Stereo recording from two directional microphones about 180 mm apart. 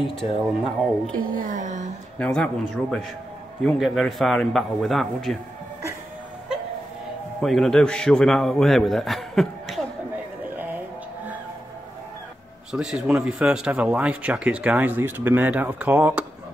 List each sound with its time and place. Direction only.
0.1 s a man's voice: centre (ahead or behind)
1.1 s a woman's voice: 50° right (ahead or behind)
2.1 s a man's voice: 5° left (ahead or behind)
7.4 s a man's voice: centre (ahead or behind)
10.1 s a sound: 10° right (ahead or behind)
12.7 s a man's voice: 5° right (ahead or behind)